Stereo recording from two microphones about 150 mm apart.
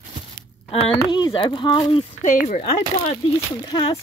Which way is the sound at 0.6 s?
40° left (ahead or behind).